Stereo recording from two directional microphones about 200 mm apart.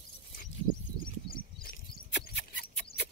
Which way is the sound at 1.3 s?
45° left (ahead or behind).